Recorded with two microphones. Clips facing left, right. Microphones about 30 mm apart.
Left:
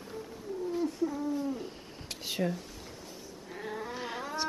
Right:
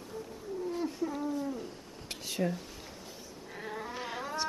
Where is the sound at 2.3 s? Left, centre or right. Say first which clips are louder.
Left 1 dB; centre.